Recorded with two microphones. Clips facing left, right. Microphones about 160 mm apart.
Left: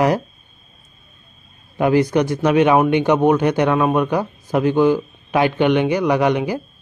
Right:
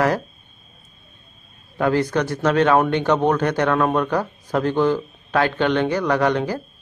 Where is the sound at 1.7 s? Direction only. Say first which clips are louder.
Left 4 dB; 15° left (ahead or behind).